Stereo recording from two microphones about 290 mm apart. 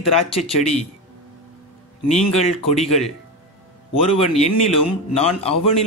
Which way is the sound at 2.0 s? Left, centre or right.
Left.